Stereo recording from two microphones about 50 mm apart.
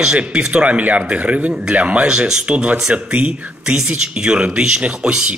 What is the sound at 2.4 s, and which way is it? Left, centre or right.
A man's voice, right.